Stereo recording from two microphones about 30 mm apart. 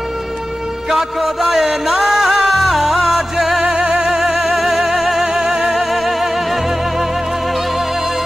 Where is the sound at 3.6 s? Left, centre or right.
Right.